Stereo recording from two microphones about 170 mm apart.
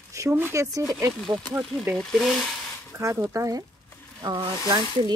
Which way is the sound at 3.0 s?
20° right (ahead or behind).